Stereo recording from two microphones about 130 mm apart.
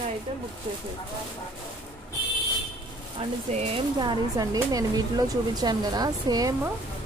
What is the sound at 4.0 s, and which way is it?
Speech, 35° right (ahead or behind).